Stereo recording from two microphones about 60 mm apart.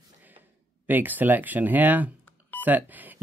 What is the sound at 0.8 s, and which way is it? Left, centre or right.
Speech, right.